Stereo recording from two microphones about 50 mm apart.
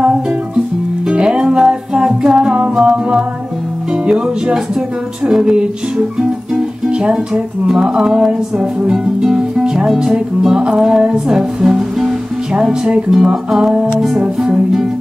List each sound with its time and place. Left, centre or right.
1.1 s music: centre
6.9 s speech: centre
7.6 s music: centre
14.2 s music: centre